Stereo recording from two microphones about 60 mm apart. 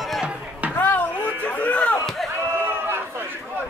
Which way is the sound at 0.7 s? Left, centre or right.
Left.